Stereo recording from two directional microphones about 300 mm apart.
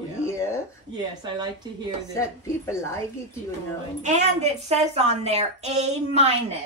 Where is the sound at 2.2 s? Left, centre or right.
Centre.